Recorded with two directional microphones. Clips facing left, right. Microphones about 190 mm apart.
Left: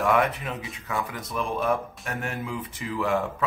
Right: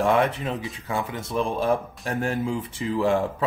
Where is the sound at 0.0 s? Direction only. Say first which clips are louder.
Right 2 dB; 30° right (ahead or behind).